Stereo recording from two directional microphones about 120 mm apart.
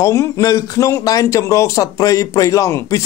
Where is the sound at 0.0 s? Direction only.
25° left (ahead or behind).